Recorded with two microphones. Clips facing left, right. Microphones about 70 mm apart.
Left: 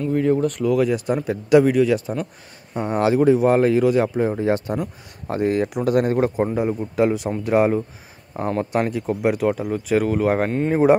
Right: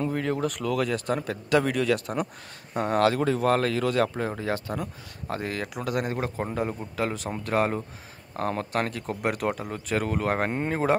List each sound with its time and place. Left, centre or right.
0.1 s speech: centre
4.4 s speech: left
6.3 s speech: centre